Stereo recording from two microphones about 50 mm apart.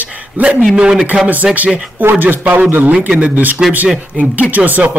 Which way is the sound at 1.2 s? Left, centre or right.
Right.